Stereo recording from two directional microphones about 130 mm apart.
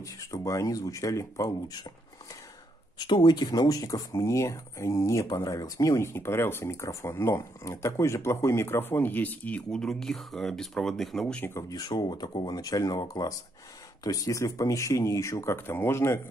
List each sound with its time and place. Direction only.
0.0 s speech: 25° left (ahead or behind)
3.0 s speech: 35° left (ahead or behind); by 11.4 s 5° left (ahead or behind)
11.4 s speech: 25° left (ahead or behind)